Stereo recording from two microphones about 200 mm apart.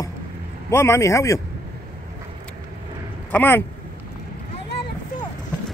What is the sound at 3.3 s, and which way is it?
Speech, 10° left (ahead or behind).